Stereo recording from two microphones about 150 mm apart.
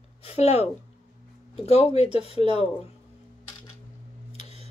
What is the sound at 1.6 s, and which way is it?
Speech, 40° left (ahead or behind).